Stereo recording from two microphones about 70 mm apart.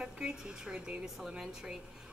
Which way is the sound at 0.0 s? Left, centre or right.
Centre.